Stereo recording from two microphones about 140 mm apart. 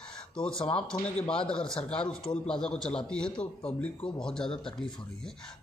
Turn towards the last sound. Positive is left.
turn(degrees=5)  # may be behind; listen again after turning